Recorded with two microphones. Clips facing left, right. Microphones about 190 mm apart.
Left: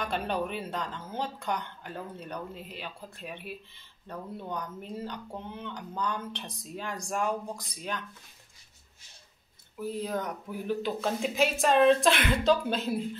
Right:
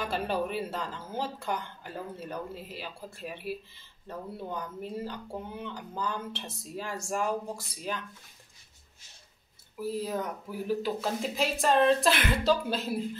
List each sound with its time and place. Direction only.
0.0 s speech: 5° right (ahead or behind)
9.8 s speech: 5° right (ahead or behind)